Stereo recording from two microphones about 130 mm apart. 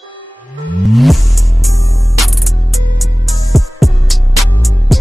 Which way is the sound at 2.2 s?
Centre (ahead or behind).